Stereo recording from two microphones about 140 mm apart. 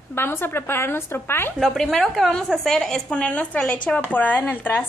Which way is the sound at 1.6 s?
5° left (ahead or behind).